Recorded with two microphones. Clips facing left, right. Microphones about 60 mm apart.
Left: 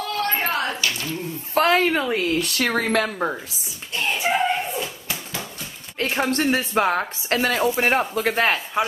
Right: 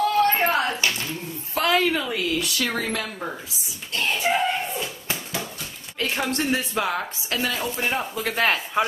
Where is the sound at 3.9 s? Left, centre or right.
Centre.